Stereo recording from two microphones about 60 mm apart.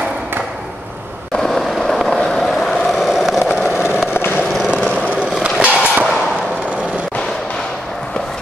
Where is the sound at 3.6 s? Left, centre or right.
Left.